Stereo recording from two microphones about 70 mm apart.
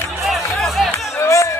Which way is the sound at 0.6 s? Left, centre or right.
Centre.